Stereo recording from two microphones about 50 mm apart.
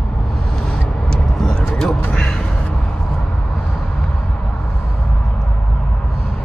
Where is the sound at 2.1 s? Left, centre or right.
Centre.